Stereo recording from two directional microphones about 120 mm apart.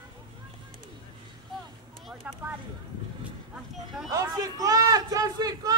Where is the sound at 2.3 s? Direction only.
15° right (ahead or behind).